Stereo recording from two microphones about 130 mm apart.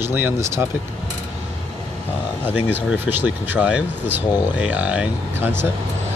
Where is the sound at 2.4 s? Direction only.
15° right (ahead or behind).